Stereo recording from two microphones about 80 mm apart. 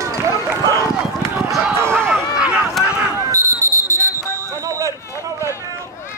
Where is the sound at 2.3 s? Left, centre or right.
Centre.